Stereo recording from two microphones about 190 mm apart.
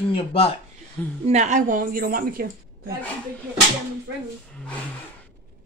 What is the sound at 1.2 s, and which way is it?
A woman's voice, 35° right (ahead or behind).